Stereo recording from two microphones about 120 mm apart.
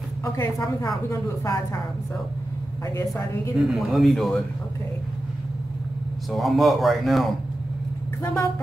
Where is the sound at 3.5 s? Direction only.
Centre (ahead or behind).